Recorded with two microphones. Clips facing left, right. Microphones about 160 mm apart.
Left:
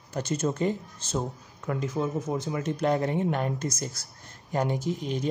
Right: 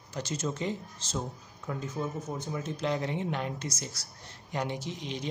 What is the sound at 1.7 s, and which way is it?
Speech, 90° left.